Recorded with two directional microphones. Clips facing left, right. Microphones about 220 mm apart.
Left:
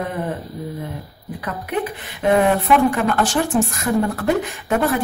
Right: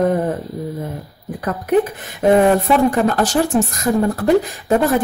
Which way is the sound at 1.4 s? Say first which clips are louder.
Right 8 dB; 45° right (ahead or behind).